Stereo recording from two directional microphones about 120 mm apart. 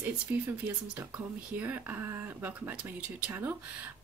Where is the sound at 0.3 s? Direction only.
15° right (ahead or behind).